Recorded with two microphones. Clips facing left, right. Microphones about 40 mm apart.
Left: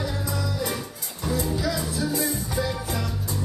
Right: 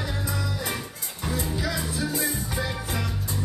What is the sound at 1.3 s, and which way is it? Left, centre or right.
Music, right.